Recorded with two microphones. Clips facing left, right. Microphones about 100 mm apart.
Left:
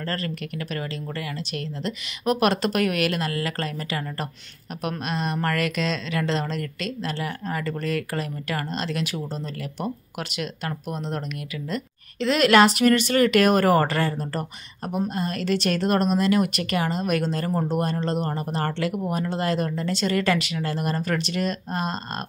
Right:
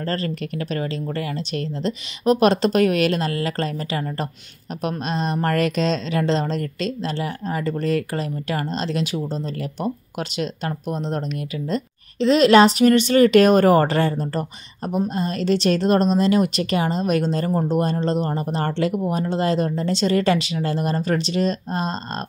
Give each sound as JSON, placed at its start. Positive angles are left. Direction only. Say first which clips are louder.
{"t": 0.0, "sound": "speech", "louder": "right 4 dB", "side_deg": -30}